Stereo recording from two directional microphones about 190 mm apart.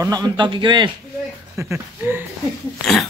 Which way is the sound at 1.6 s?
15° right (ahead or behind).